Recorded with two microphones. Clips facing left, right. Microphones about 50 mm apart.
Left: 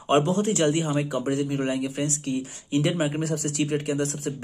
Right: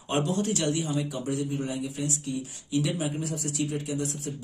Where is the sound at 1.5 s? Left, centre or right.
Left.